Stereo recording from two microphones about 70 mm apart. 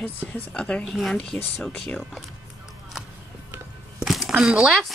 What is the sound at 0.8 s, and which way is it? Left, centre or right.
Speech, centre.